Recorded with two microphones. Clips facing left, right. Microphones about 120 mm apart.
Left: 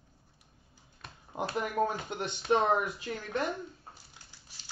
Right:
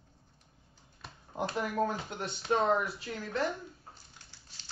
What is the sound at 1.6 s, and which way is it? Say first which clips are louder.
Speech: left 1 dB; 20° left (ahead or behind).